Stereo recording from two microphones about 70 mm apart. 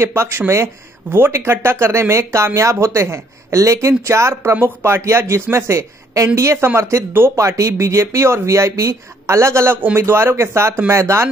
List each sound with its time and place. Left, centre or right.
0.0 s speech: right